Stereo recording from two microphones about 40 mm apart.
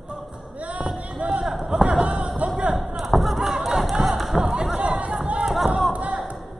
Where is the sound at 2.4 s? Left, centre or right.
Right.